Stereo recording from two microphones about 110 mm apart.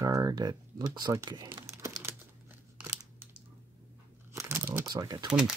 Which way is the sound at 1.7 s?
25° right (ahead or behind).